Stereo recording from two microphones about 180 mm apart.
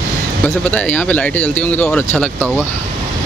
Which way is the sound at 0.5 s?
5° left (ahead or behind).